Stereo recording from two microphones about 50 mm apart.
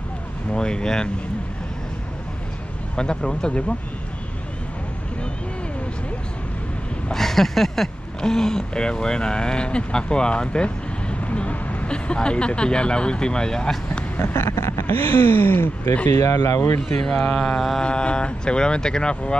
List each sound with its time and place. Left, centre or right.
0.5 s speech: centre
3.0 s speech: centre
7.1 s speech: centre
14.2 s a sound: left
14.9 s a sound: left
16.2 s speech: left
17.0 s speech: centre
17.8 s speech: centre